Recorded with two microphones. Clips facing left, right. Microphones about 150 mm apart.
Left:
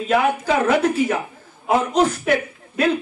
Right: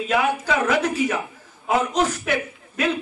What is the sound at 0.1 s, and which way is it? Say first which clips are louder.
Speech: left 4 dB; 30° left (ahead or behind).